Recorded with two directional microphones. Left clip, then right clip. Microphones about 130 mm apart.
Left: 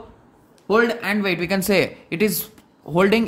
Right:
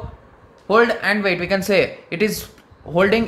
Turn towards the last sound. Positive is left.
turn(degrees=50)  # may be behind; listen again after turning